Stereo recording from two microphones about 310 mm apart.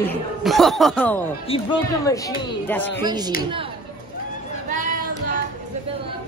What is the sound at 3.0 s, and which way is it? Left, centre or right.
Speech, centre.